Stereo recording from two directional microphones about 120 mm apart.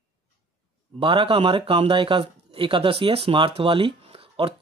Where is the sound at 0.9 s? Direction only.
50° right (ahead or behind).